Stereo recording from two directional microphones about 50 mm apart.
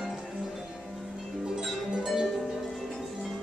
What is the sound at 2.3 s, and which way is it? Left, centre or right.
Music, centre.